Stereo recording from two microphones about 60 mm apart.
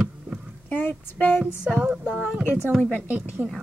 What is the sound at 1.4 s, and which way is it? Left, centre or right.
Speech, centre.